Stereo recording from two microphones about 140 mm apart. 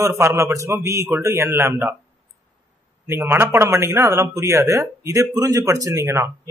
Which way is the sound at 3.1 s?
15° right (ahead or behind).